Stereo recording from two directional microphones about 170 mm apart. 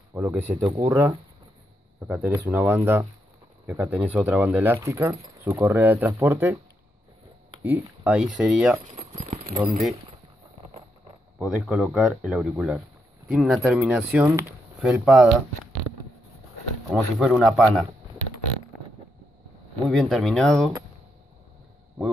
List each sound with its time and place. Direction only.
0.1 s speech: 15° right (ahead or behind)
7.6 s speech: 10° right (ahead or behind)
8.9 s keys jangling: 40° right (ahead or behind)
9.6 s speech: centre (ahead or behind)
11.3 s speech: 5° right (ahead or behind)
16.9 s speech: centre (ahead or behind)
19.9 s speech: centre (ahead or behind)